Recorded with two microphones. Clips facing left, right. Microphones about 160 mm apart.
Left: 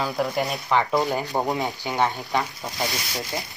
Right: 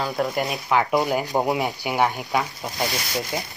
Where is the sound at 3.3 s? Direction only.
15° right (ahead or behind).